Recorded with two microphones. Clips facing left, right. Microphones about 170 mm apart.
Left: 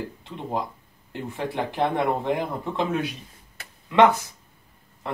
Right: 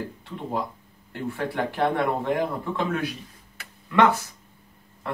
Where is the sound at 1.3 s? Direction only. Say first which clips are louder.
Even; 20° left (ahead or behind).